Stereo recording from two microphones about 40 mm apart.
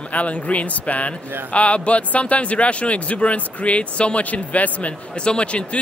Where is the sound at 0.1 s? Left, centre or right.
Left.